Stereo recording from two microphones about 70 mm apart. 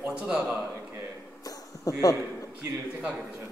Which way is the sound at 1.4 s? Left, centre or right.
Left.